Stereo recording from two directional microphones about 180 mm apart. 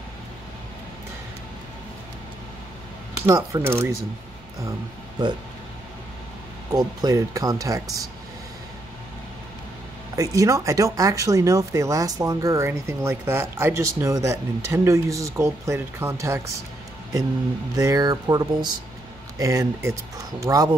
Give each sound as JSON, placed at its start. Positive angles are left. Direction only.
{"t": 3.3, "sound": "speech", "side_deg": -15}
{"t": 6.7, "sound": "speech", "side_deg": -20}
{"t": 10.1, "sound": "speech", "side_deg": -20}
{"t": 17.7, "sound": "speech", "side_deg": -20}